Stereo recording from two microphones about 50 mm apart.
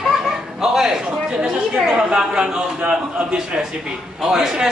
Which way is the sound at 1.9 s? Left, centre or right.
Centre.